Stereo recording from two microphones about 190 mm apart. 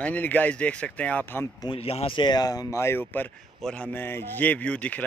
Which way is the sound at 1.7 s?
30° left (ahead or behind).